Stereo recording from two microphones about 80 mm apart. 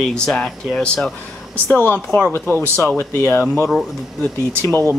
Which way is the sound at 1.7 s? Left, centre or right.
Left.